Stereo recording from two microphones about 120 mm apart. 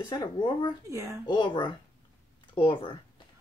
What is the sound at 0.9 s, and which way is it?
Speech, 25° right (ahead or behind).